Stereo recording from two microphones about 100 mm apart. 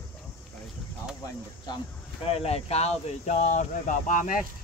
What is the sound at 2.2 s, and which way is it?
Speech, 85° left.